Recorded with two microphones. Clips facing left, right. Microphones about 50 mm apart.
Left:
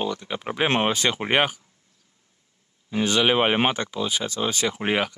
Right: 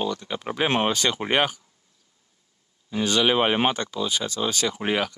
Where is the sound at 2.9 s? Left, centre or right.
Centre.